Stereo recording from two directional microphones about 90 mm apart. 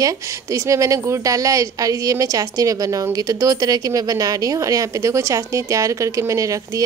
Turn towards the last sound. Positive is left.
turn(degrees=-35)  # may be behind; listen again after turning